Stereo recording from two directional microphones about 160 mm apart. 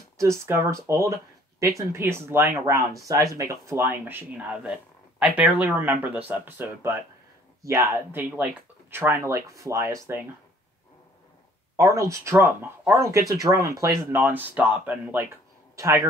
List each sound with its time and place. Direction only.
0.2 s speech: 20° right (ahead or behind)
11.7 s speech: 20° right (ahead or behind)